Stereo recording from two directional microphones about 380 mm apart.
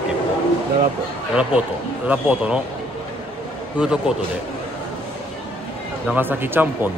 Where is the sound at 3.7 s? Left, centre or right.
Centre.